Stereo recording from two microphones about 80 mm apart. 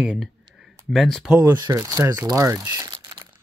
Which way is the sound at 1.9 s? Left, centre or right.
Right.